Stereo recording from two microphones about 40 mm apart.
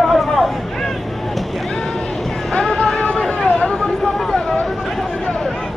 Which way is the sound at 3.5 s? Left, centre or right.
Left.